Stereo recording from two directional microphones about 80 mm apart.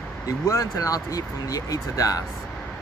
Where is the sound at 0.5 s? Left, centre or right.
Left.